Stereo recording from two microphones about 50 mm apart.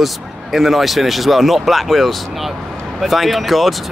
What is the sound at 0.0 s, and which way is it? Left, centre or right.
Speech, centre.